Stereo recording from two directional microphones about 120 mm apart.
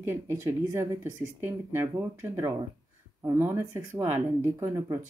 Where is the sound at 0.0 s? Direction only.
20° right (ahead or behind).